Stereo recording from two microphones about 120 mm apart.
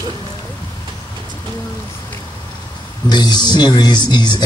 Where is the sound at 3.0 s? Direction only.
35° left (ahead or behind).